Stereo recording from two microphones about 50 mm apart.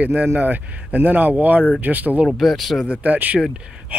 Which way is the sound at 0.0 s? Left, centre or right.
Right.